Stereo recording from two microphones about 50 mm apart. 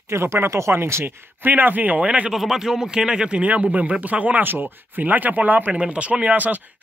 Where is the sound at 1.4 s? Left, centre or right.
Right.